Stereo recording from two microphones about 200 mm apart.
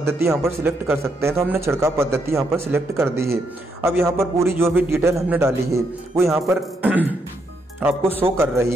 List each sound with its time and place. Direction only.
0.0 s a man's voice: 15° right (ahead or behind)